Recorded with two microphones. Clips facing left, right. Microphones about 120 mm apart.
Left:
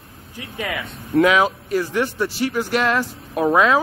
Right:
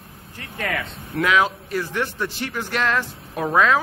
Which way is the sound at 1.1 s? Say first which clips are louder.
Left 4 dB; 20° left (ahead or behind).